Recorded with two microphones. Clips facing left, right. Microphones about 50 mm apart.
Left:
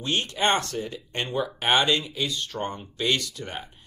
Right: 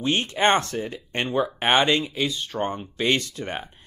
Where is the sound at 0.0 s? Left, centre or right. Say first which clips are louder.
Right 4 dB; right.